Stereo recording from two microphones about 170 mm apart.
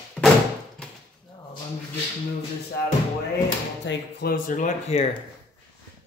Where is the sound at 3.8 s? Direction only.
60° left (ahead or behind); by 5.0 s 45° left (ahead or behind).